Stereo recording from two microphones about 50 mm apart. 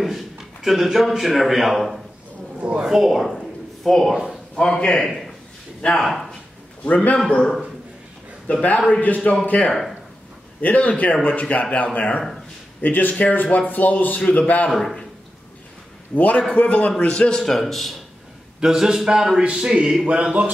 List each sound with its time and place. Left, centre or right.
0.0 s a man's voice: centre
3.3 s a sound: centre
4.6 s a man's voice: centre
6.8 s a man's voice: left
8.6 s a man's voice: left
9.7 s a man's voice: centre
10.6 s a man's voice: left
14.7 s a man's voice: centre
16.2 s a man's voice: left
17.4 s a man's voice: centre
18.6 s speech: centre